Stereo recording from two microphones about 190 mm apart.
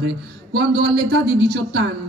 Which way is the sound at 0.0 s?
60° right (ahead or behind).